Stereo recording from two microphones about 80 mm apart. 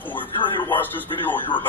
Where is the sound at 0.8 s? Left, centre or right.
Left.